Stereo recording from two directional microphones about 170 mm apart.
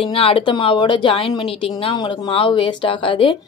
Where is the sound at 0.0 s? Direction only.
30° left (ahead or behind).